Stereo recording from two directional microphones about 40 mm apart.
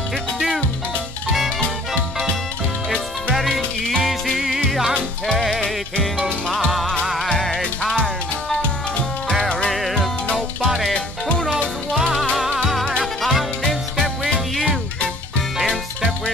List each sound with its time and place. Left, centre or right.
3.3 s music: centre
5.6 s music: left
7.3 s music: centre
9.7 s music: centre
12.0 s music: centre